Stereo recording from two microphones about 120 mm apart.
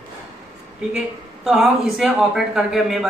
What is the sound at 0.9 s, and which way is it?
Speech, 5° right (ahead or behind).